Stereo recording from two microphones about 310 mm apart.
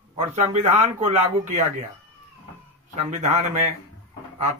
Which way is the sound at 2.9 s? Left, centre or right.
Right.